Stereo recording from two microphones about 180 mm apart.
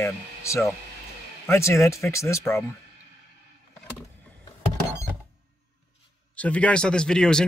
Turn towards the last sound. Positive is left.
turn(degrees=5)  # may be behind; listen again after turning